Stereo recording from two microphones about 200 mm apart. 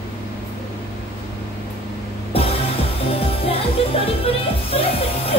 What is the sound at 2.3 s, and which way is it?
Music, 30° left (ahead or behind).